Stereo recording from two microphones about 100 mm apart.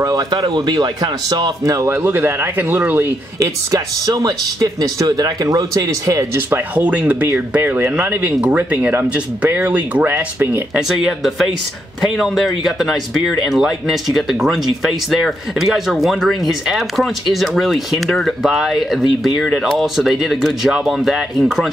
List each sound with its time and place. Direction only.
0.4 s speech: 45° right (ahead or behind)
1.6 s speech: 30° right (ahead or behind)
3.3 s speech: 35° right (ahead or behind)
6.3 s speech: 20° right (ahead or behind)
10.8 s speech: 5° right (ahead or behind)